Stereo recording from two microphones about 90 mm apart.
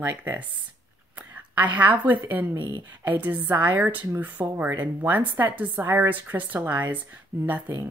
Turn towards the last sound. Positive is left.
turn(degrees=-20)  # may be behind; listen again after turning